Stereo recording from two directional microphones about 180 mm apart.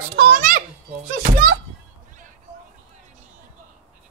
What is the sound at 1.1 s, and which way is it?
Speech, 55° right (ahead or behind).